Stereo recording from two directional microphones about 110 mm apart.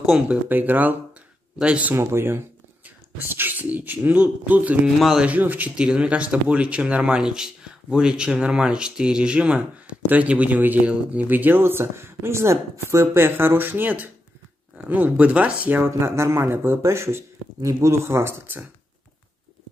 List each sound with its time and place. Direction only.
0.3 s speech: 15° right (ahead or behind)
2.0 s speech: 20° right (ahead or behind)
4.9 s speech: centre (ahead or behind)
5.3 s speech: 15° right (ahead or behind)